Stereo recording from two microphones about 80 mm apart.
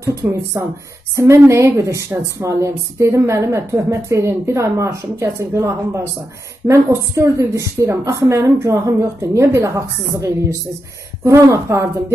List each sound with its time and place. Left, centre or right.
0.0 s a woman's voice: right
11.2 s a woman's voice: right